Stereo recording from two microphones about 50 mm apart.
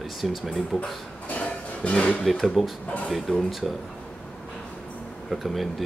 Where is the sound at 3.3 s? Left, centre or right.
Centre.